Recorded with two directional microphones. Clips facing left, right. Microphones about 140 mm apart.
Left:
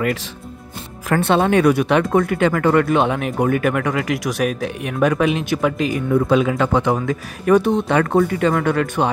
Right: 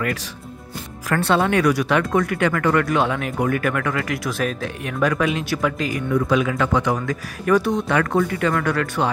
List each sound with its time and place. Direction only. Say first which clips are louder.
1.0 s speech: left 3 dB; 20° left (ahead or behind)